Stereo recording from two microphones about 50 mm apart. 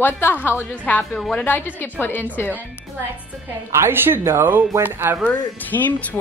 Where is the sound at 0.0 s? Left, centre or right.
Left.